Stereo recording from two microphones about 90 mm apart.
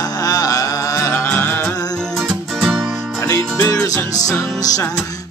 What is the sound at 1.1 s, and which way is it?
Music, 20° left (ahead or behind).